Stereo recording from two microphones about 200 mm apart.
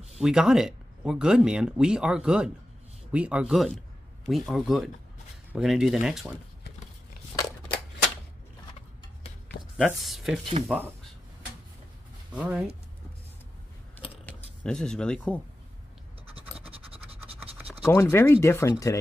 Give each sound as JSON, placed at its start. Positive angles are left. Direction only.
{"t": 0.2, "sound": "speech", "side_deg": -5}
{"t": 9.8, "sound": "speech", "side_deg": 0}
{"t": 12.4, "sound": "speech", "side_deg": -5}
{"t": 14.2, "sound": "speech", "side_deg": 5}
{"t": 16.6, "sound": "scratch", "side_deg": -30}
{"t": 17.8, "sound": "speech", "side_deg": 15}